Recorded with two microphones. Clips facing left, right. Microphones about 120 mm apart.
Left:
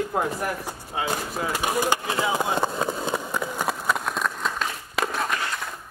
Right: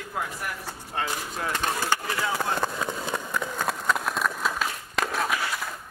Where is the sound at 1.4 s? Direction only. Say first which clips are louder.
Left 3 dB; 10° left (ahead or behind).